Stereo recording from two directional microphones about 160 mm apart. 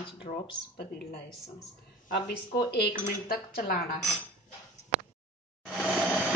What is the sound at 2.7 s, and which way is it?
Speech, 80° left.